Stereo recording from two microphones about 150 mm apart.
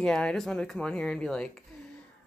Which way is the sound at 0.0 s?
5° left (ahead or behind).